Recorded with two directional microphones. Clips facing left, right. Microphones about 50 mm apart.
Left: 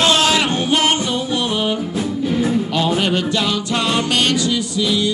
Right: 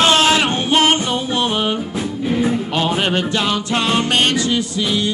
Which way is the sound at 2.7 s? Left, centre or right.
Right.